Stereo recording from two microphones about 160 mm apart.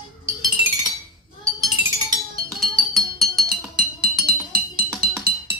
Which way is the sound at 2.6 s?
Centre (ahead or behind).